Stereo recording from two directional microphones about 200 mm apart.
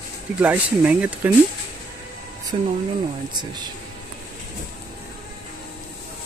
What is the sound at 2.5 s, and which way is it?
Speech, 30° right (ahead or behind).